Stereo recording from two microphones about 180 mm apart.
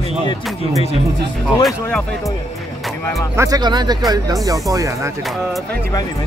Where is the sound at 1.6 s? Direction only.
5° left (ahead or behind).